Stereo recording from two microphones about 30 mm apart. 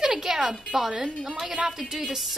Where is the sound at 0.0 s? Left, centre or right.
Centre.